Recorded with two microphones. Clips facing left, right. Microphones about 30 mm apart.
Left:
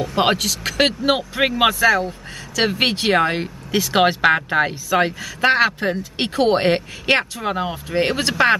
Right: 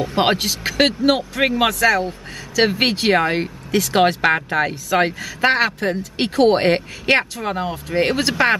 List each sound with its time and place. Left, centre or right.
0.0 s speech: centre
0.7 s speech: centre
1.8 s speech: centre
4.8 s speech: centre